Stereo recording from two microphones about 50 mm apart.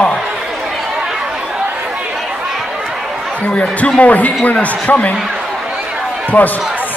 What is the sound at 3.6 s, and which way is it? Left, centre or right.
Speech, left.